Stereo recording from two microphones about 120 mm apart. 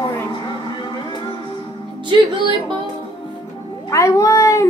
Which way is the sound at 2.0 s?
40° right (ahead or behind).